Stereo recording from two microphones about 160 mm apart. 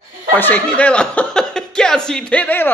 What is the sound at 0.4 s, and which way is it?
Speech, 10° left (ahead or behind).